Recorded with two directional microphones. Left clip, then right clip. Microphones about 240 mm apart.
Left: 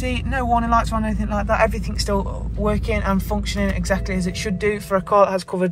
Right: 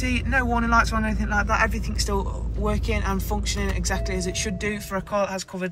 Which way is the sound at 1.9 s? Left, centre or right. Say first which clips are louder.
Left 4 dB; centre.